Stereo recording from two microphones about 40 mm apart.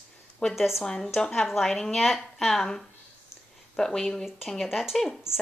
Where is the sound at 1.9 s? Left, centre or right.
Centre.